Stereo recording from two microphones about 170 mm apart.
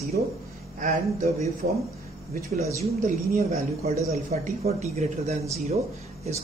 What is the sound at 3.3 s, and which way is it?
Speech, 45° right (ahead or behind).